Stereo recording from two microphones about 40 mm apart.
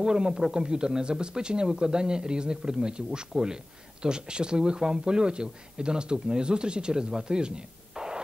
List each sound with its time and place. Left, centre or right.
0.0 s speech: centre